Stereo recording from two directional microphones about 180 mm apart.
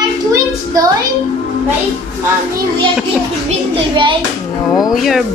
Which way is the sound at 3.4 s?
25° right (ahead or behind).